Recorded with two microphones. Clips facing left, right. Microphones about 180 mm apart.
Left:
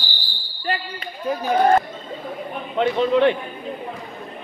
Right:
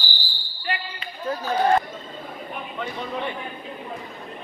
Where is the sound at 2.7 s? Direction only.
90° left.